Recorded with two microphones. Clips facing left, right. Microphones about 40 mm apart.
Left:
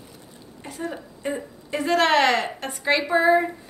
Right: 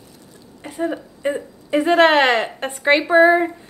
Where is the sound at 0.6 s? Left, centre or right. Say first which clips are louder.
Right 8 dB; right.